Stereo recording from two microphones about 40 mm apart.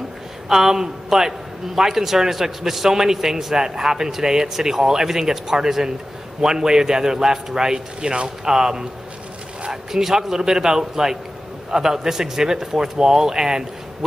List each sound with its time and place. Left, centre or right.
0.5 s a man's voice: centre